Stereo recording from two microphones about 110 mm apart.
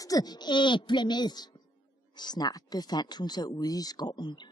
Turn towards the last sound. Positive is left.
turn(degrees=35)  # may be behind; listen again after turning